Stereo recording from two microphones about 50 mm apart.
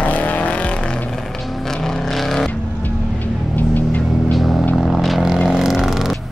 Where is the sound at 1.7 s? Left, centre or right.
Centre.